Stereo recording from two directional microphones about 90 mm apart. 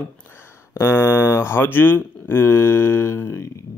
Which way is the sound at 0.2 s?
25° left (ahead or behind).